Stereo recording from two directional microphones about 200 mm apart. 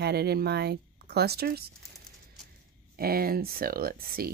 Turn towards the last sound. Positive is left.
turn(degrees=-50)  # may be behind; listen again after turning